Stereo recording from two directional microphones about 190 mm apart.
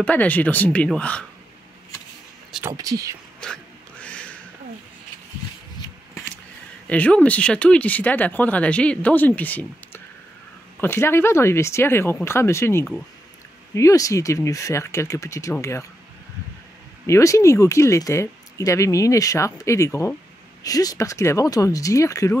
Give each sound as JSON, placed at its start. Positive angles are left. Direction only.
{"t": 0.0, "sound": "speech", "side_deg": 10}
{"t": 2.7, "sound": "speech", "side_deg": -20}
{"t": 3.4, "sound": "a sound", "side_deg": 5}
{"t": 5.8, "sound": "shuffling cards", "side_deg": 15}
{"t": 6.9, "sound": "speech", "side_deg": 10}
{"t": 17.0, "sound": "speech", "side_deg": 15}